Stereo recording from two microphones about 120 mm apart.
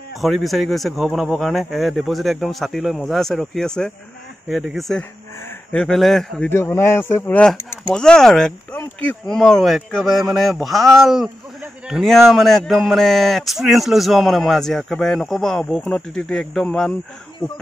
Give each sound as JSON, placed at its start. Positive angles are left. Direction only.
{"t": 0.2, "sound": "speech", "side_deg": 0}
{"t": 6.5, "sound": "speech", "side_deg": 20}
{"t": 7.9, "sound": "speech", "side_deg": 5}
{"t": 17.4, "sound": "a sound", "side_deg": 35}